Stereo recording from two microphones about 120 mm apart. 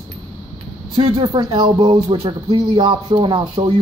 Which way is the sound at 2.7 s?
45° right (ahead or behind).